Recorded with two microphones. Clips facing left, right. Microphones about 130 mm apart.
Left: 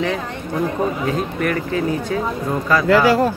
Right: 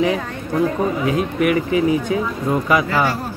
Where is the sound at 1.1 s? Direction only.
10° right (ahead or behind).